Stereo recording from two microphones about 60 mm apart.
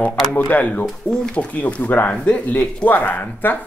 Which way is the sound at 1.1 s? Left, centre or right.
Centre.